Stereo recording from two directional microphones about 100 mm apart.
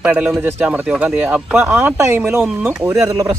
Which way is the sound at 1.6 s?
25° right (ahead or behind).